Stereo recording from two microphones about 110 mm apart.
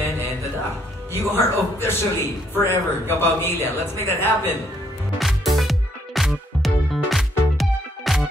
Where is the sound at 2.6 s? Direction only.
20° left (ahead or behind).